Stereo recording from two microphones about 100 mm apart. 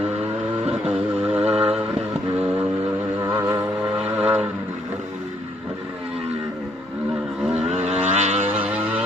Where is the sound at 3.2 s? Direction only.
35° right (ahead or behind).